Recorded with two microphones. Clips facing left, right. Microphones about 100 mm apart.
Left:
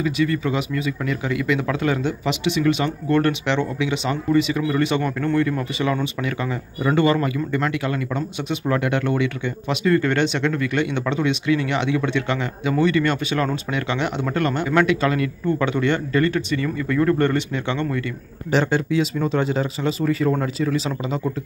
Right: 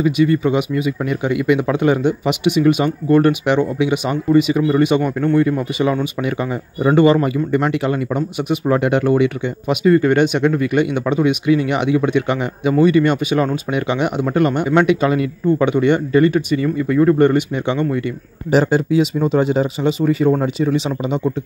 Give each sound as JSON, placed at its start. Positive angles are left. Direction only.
{"t": 0.0, "sound": "speech", "side_deg": -25}
{"t": 0.7, "sound": "speech", "side_deg": -15}
{"t": 18.5, "sound": "speech", "side_deg": -35}
{"t": 20.2, "sound": "speech", "side_deg": -25}